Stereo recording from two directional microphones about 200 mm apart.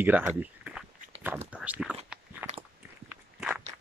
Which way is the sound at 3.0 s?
10° right (ahead or behind).